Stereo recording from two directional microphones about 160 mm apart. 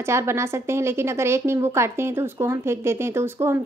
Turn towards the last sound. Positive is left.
turn(degrees=-15)  # may be behind; listen again after turning